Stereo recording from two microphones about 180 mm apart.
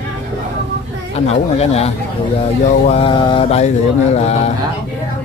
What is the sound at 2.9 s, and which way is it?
Speech, 30° left (ahead or behind).